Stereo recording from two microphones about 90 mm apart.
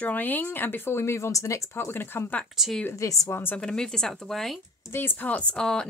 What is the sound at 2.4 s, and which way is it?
Speech, centre (ahead or behind).